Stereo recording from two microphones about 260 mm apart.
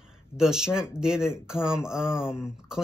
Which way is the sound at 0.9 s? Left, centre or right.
Centre.